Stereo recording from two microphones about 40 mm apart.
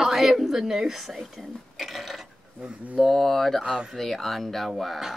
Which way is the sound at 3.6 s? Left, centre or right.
Centre.